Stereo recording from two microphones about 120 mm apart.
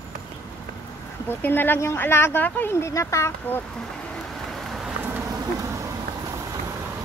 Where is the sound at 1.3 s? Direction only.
15° left (ahead or behind).